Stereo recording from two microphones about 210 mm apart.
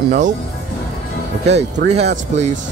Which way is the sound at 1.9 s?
30° right (ahead or behind).